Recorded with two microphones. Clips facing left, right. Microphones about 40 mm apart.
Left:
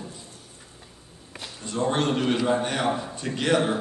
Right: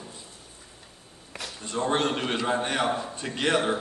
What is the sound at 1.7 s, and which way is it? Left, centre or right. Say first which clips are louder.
A man's voice: left 1 dB; centre.